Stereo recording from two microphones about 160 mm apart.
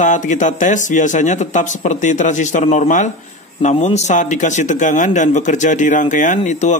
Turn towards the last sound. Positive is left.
turn(degrees=50)  # may be behind; listen again after turning